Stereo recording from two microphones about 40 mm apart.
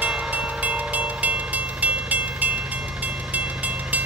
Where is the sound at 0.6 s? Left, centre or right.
Right.